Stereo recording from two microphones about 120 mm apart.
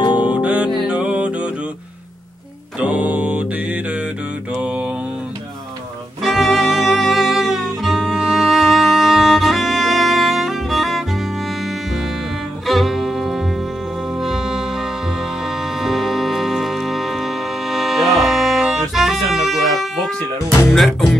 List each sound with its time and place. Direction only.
0.0 s music: 40° left (ahead or behind)
0.3 s music: 10° right (ahead or behind)
2.8 s mantra: 10° right (ahead or behind)
6.2 s music: centre (ahead or behind)